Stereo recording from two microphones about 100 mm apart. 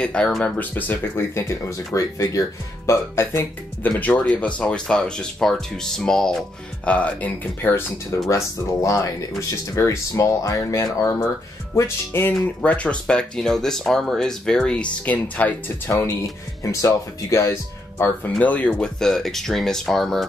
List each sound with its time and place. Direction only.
0.0 s speech: 10° left (ahead or behind)
0.7 s speech: 20° left (ahead or behind)
4.0 s speech: 15° left (ahead or behind)
16.6 s speech: 30° left (ahead or behind)
17.9 s speech: 20° left (ahead or behind); by 20.2 s centre (ahead or behind)